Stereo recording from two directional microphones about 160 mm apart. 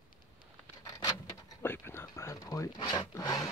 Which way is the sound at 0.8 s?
20° left (ahead or behind).